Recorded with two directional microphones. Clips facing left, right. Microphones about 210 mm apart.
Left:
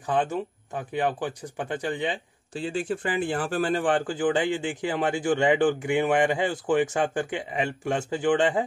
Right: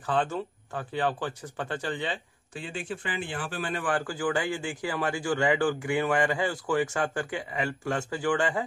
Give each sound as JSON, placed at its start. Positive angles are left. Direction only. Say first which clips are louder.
{"t": 0.0, "sound": "speech", "louder": "left 2 dB", "side_deg": 15}
{"t": 2.5, "sound": "speech", "louder": "left 7 dB", "side_deg": 35}
{"t": 3.8, "sound": "speech", "louder": "left 5 dB", "side_deg": 25}